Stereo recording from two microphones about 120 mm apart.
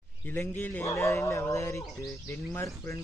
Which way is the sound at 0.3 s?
15° left (ahead or behind).